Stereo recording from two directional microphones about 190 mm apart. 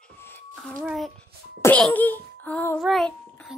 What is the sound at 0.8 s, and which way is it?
Speech, centre (ahead or behind).